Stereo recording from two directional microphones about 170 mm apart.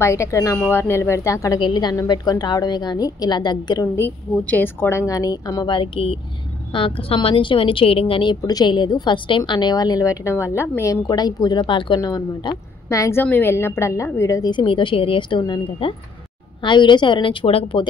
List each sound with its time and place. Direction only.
0.0 s a woman's voice: 15° left (ahead or behind); by 17.8 s 30° left (ahead or behind)